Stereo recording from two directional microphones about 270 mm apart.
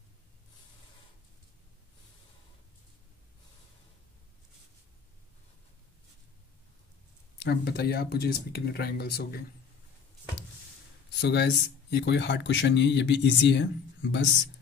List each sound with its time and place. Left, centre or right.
7.3 s speech: left
11.1 s speech: left